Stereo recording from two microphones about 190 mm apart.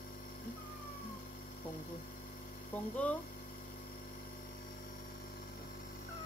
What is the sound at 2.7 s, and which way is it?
Speech, 10° left (ahead or behind).